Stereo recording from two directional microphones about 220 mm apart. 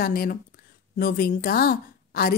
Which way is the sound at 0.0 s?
40° left (ahead or behind).